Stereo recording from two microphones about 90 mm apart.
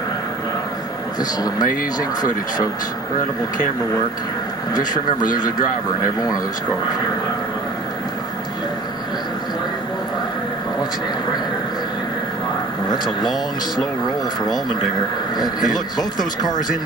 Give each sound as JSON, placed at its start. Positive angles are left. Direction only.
{"t": 1.4, "sound": "speech", "side_deg": 45}
{"t": 4.7, "sound": "speech", "side_deg": 50}
{"t": 12.9, "sound": "speech", "side_deg": 55}
{"t": 15.3, "sound": "speech", "side_deg": 50}